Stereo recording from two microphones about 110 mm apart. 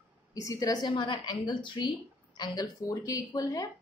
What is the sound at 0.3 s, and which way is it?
A woman's voice, 35° left (ahead or behind).